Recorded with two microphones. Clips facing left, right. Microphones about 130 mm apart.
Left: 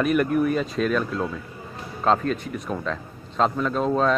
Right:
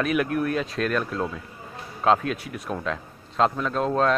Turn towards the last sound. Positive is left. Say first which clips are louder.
# left 1 dB
turn(degrees=0)  # may be behind; listen again after turning